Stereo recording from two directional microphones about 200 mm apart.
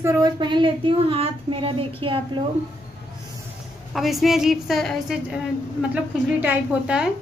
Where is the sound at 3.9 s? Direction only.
Centre (ahead or behind).